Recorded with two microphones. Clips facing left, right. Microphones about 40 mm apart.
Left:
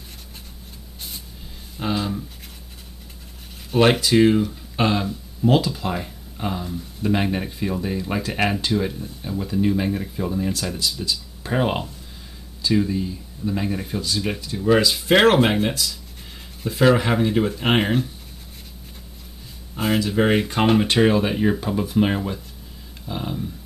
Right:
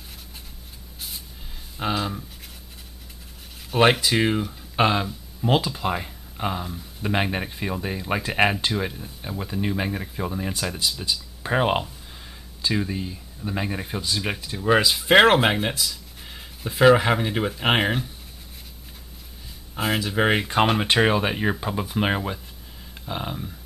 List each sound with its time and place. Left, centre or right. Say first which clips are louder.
1.8 s speech: left 1 dB; centre
3.9 s speech: left 5 dB; centre
20.0 s speech: left 3 dB; centre